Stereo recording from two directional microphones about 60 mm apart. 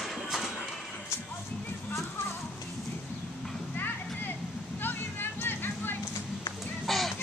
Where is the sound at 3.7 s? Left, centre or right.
Left.